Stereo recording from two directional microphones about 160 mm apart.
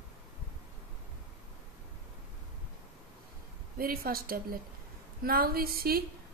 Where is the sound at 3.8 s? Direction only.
65° right (ahead or behind).